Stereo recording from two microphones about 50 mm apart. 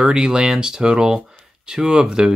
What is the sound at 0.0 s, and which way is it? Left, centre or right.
Speech, centre.